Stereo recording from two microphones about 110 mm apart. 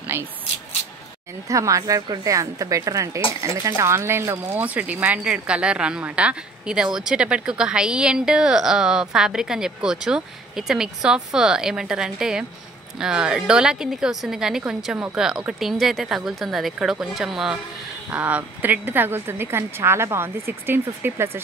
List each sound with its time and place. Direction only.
0.0 s a sound: 20° right (ahead or behind)
1.5 s a woman's voice: 30° right (ahead or behind); by 17.6 s 5° right (ahead or behind)
18.1 s a woman's voice: 15° right (ahead or behind)